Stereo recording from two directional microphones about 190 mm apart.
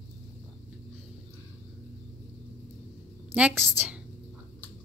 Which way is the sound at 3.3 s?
5° right (ahead or behind).